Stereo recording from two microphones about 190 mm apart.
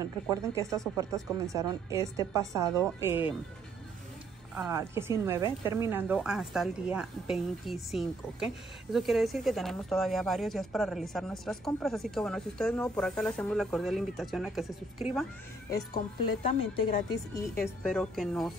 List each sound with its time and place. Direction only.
0.0 s a woman's voice: 20° right (ahead or behind)
4.6 s a woman's voice: 15° right (ahead or behind)
16.7 s speech: 20° left (ahead or behind)
17.8 s speech: centre (ahead or behind)